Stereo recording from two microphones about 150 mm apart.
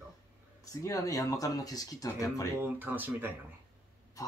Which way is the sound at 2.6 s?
10° right (ahead or behind).